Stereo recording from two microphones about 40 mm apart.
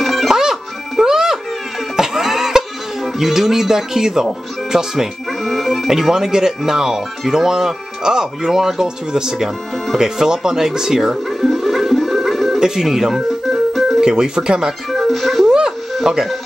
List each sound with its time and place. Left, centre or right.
0.0 s music: centre
0.3 s music: centre
5.4 s speech: centre
5.9 s speech: centre
11.2 s music: centre
12.5 s music: centre
12.8 s speech: centre
13.7 s keyboard: centre
14.0 s speech: centre
14.9 s music: centre
15.4 s a sound: centre
16.1 s speech: right